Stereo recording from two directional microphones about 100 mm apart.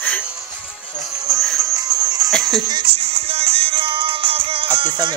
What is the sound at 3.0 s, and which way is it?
Music, 75° right (ahead or behind).